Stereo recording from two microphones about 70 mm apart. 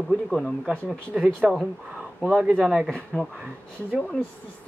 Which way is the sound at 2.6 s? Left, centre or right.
Centre.